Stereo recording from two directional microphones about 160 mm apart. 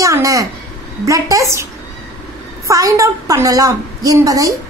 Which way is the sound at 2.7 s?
20° right (ahead or behind).